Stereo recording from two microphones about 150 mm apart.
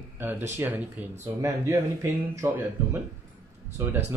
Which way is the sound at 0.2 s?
15° right (ahead or behind).